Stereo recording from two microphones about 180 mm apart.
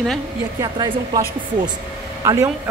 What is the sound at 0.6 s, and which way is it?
Speech, 20° right (ahead or behind).